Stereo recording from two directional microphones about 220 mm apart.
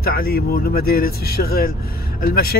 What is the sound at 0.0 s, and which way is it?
Speech, 45° left (ahead or behind).